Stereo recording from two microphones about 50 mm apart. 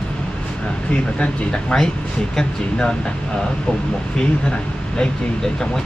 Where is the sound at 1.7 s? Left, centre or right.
Left.